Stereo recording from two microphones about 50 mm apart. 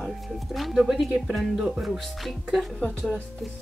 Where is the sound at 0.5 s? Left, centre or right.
Centre.